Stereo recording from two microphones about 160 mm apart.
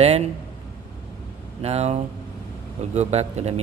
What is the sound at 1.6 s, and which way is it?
Speech, 40° right (ahead or behind).